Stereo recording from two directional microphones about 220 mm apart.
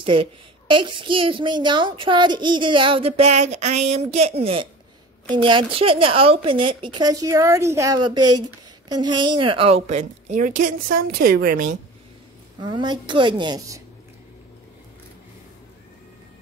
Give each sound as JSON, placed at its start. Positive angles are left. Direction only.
{"t": 0.0, "sound": "a woman's voice", "side_deg": -25}
{"t": 12.5, "sound": "a woman's voice", "side_deg": -20}